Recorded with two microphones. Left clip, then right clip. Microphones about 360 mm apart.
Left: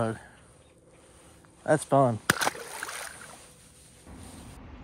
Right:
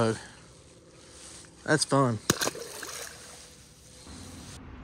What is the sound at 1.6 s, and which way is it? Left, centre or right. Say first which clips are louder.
Speech: left 2 dB; centre.